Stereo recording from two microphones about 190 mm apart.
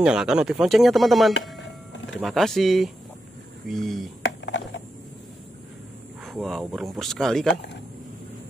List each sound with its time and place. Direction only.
0.0 s speech: 5° right (ahead or behind)
4.2 s a sound: 75° left (ahead or behind)
6.2 s speech: centre (ahead or behind)